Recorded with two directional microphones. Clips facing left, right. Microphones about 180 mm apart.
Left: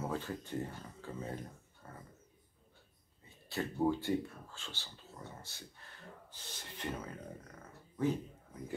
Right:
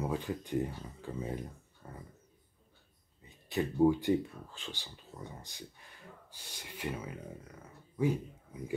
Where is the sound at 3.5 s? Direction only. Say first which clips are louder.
Right 6 dB; 15° right (ahead or behind).